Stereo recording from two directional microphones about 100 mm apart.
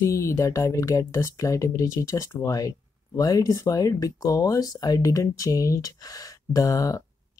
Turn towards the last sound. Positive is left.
turn(degrees=35)  # may be behind; listen again after turning